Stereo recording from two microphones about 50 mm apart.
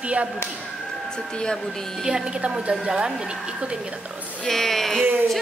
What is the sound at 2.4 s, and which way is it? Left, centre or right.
Speech, right.